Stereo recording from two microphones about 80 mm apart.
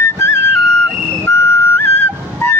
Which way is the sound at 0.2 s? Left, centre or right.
Left.